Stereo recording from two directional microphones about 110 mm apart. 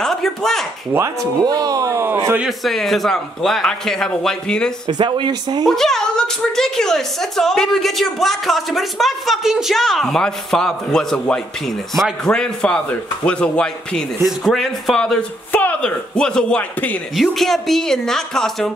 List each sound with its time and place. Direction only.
0.0 s a sound: 5° left (ahead or behind)
0.9 s speech: 20° right (ahead or behind)
1.4 s speech: 35° right (ahead or behind)
2.4 s a woman's voice: centre (ahead or behind)
4.9 s speech: 45° right (ahead or behind)
5.7 s a woman's voice: 5° left (ahead or behind)
17.1 s a woman's voice: centre (ahead or behind)